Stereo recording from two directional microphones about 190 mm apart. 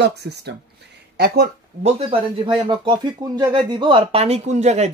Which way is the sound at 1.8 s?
30° right (ahead or behind).